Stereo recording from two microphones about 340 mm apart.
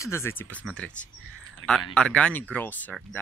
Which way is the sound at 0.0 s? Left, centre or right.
Centre.